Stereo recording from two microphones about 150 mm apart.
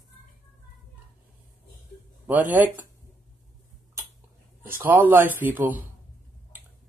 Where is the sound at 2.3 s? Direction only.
10° right (ahead or behind).